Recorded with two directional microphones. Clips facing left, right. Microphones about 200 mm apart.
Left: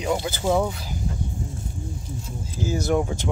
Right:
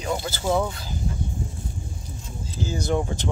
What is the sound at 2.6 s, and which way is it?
Speech, 5° left (ahead or behind).